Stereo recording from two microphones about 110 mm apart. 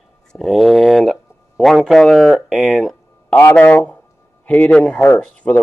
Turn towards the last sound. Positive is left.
turn(degrees=10)  # may be behind; listen again after turning